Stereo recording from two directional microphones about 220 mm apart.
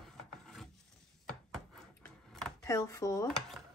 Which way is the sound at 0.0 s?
Centre (ahead or behind).